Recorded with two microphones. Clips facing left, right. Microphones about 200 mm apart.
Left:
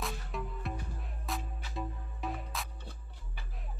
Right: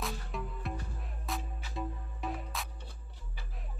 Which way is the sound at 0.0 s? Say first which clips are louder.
Even; centre (ahead or behind).